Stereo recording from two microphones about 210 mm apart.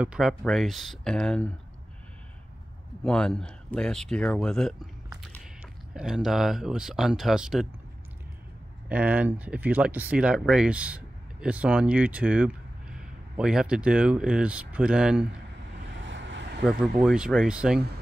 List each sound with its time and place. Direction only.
0.0 s speech: 5° right (ahead or behind)
3.0 s speech: 5° left (ahead or behind)
5.9 s speech: centre (ahead or behind)
8.8 s speech: 5° right (ahead or behind)
16.0 s vehicle: 60° right (ahead or behind)
17.0 s speech: 5° right (ahead or behind)